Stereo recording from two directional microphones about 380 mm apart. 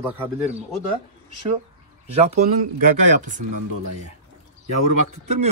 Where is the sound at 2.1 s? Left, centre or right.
Centre.